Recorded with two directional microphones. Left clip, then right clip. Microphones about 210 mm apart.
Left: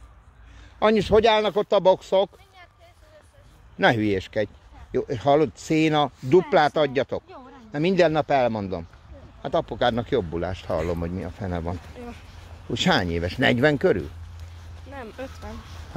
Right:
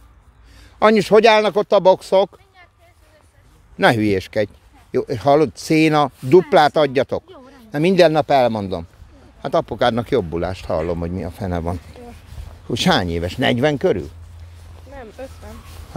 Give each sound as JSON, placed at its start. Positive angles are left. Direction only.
{"t": 0.7, "sound": "speech", "side_deg": -40}
{"t": 3.7, "sound": "speech", "side_deg": -30}
{"t": 14.9, "sound": "vehicle", "side_deg": 50}